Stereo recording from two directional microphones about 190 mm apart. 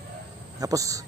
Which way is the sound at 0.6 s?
20° right (ahead or behind).